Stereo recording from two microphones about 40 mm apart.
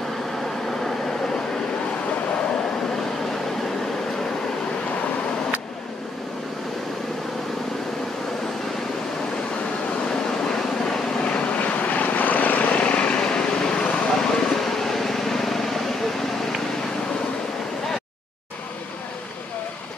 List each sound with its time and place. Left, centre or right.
10.0 s vehicle: centre
11.2 s vehicle: left; by 15.8 s centre